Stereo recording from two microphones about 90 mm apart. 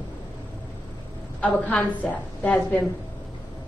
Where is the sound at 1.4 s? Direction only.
15° left (ahead or behind).